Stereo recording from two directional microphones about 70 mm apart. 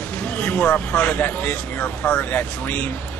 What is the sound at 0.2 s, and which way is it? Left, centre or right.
Speech, left.